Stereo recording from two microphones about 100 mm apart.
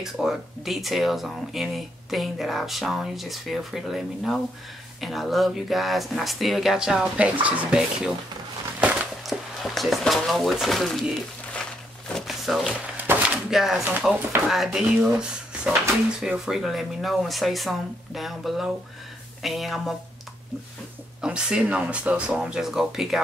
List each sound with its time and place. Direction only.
0.0 s speech: 5° right (ahead or behind)
9.2 s drawer open or close: centre (ahead or behind)
12.1 s a sound: centre (ahead or behind)
12.9 s a sound: 20° right (ahead or behind)
13.5 s speech: centre (ahead or behind)
21.2 s speech: 10° right (ahead or behind)